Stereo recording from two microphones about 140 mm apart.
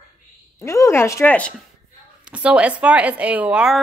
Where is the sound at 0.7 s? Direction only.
20° left (ahead or behind).